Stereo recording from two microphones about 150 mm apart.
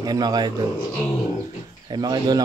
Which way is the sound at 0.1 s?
25° right (ahead or behind).